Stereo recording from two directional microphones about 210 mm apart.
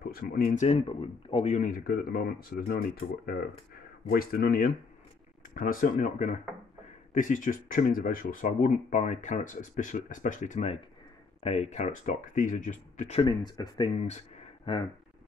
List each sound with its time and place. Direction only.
0.1 s speech: 40° left (ahead or behind)
4.1 s speech: 45° left (ahead or behind)
13.2 s speech: 20° left (ahead or behind)